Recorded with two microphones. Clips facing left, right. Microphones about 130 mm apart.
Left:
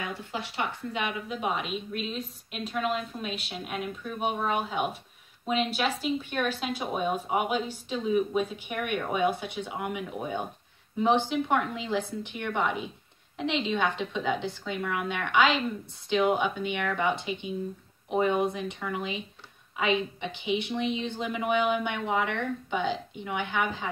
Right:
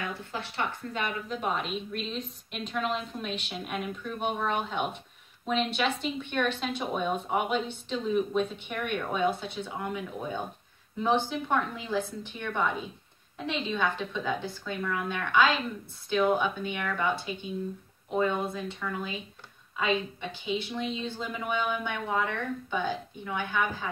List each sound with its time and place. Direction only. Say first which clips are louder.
0.0 s a woman's voice: left 1 dB; 15° left (ahead or behind)
22.1 s speech: left 1 dB; 70° left (ahead or behind)
22.4 s speech: left 2 dB; 20° left (ahead or behind)